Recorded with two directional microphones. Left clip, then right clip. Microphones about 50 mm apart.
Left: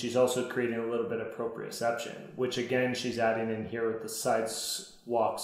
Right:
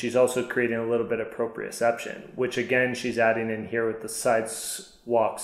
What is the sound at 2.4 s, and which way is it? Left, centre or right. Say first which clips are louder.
Speech: right 4 dB; right.